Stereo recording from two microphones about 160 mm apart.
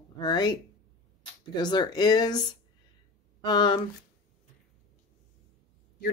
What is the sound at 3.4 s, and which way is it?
Speech, 30° left (ahead or behind).